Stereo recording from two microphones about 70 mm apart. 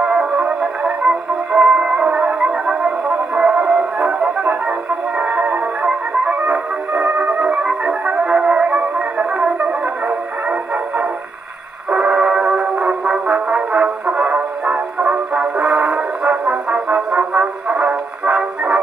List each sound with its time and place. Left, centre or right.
0.0 s music: centre
11.9 s music: centre